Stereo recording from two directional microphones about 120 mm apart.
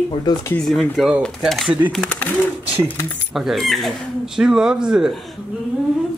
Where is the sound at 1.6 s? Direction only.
15° right (ahead or behind).